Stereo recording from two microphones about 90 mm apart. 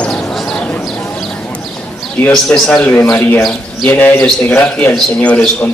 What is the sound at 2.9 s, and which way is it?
A man's voice, 25° left (ahead or behind).